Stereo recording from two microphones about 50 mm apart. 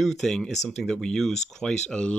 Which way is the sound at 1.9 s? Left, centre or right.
Left.